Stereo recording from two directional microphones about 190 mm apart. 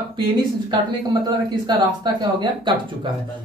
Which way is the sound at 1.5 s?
25° right (ahead or behind).